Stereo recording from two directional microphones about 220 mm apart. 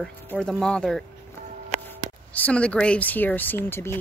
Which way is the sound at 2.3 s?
5° left (ahead or behind).